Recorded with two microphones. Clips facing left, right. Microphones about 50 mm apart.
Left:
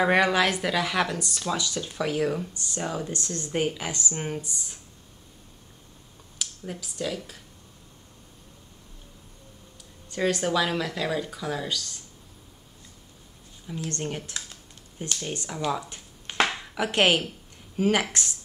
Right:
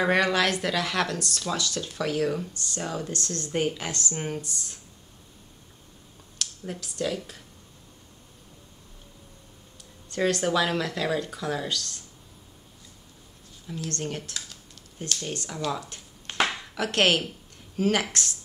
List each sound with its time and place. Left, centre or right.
0.0 s speech: centre
6.3 s speech: centre
10.0 s speech: centre
13.7 s speech: left
14.3 s typing: left
15.3 s speech: centre
16.4 s a sound: centre
17.7 s speech: centre